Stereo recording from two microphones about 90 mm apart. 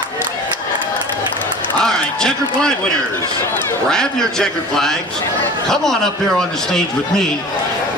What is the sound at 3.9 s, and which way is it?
A man's voice, 5° left (ahead or behind).